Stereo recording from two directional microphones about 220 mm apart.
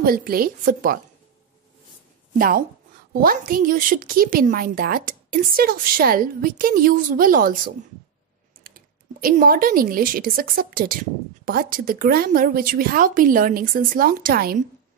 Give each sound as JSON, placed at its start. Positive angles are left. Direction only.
{"t": 0.0, "sound": "speech", "side_deg": -40}
{"t": 2.3, "sound": "speech", "side_deg": -40}